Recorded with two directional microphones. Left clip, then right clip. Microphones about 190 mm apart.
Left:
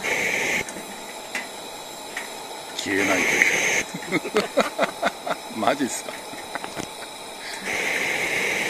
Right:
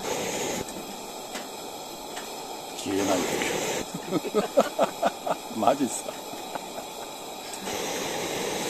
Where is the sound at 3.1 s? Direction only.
10° right (ahead or behind).